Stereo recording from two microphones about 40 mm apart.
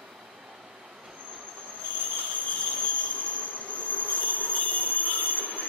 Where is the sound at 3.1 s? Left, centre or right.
Right.